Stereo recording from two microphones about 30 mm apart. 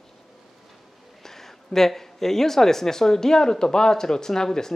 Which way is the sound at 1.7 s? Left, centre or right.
Centre.